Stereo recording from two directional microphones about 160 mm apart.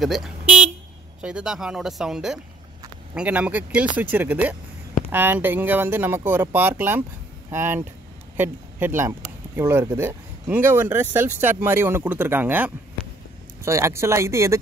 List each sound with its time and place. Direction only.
0.0 s vehicle: centre (ahead or behind)
1.2 s speech: 5° right (ahead or behind)